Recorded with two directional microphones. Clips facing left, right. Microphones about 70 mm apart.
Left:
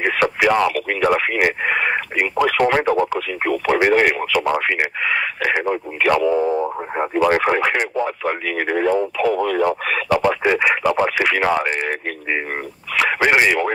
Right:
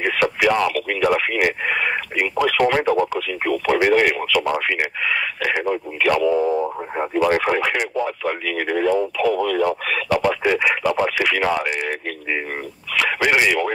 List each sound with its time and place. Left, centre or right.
0.0 s speech: left
12.9 s speech: left